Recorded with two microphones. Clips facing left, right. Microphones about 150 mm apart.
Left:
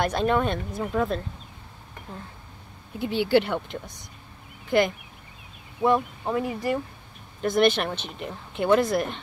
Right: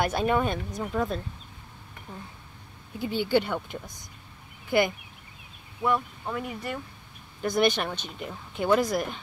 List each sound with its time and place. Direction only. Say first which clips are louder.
0.0 s speech: left 2 dB; 5° right (ahead or behind)
3.3 s speech: left 4 dB; centre (ahead or behind)
5.8 s speech: left 5 dB; 25° left (ahead or behind)
7.4 s speech: left 3 dB; centre (ahead or behind)